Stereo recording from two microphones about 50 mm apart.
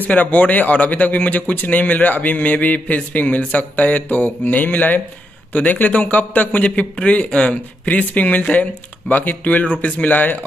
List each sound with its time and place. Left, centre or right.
0.0 s speech: left